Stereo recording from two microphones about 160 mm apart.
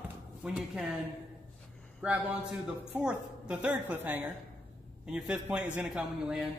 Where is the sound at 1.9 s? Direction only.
10° right (ahead or behind).